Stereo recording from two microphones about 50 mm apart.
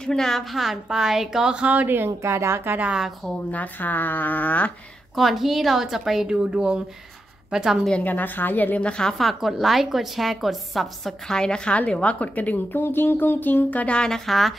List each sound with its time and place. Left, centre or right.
0.0 s a woman's voice: centre
1.7 s a woman's voice: right
2.0 s a woman's voice: right
3.5 s speech: left
5.1 s a woman's voice: centre
6.2 s speech: centre
8.0 s speech: left
8.7 s a woman's voice: left
9.2 s a woman's voice: centre
11.2 s a woman's voice: centre; by 12.5 s left
12.7 s music: left
13.9 s a woman's voice: centre
14.2 s a woman's voice: centre